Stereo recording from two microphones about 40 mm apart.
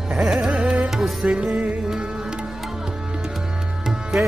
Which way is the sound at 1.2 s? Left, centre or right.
Right.